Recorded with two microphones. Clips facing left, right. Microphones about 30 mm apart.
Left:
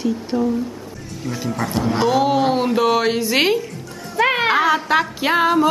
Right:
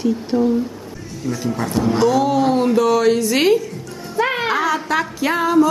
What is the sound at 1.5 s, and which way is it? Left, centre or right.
Speech, centre.